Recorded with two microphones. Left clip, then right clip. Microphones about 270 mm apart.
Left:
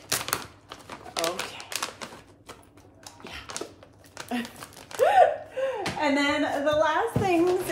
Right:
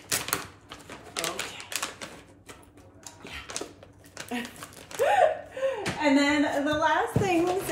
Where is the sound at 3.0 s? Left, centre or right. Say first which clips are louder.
Left 1 dB; centre.